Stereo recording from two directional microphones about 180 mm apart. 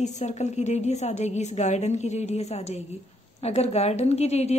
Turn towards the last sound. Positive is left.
turn(degrees=35)  # may be behind; listen again after turning